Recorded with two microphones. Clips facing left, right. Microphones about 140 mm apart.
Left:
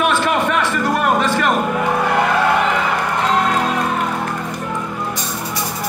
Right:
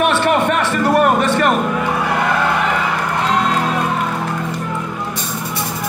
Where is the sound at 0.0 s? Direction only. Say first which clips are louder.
Right 2 dB; 60° right (ahead or behind).